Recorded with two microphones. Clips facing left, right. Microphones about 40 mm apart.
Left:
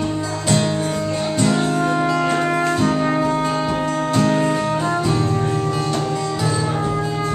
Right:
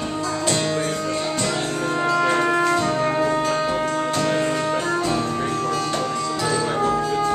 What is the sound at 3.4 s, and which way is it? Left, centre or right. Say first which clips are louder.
Music: left 1 dB; centre.